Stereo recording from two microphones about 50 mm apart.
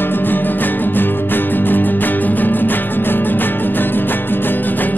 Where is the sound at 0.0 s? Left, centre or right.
Left.